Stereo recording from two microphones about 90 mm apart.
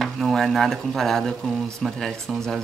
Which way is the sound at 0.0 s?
Centre (ahead or behind).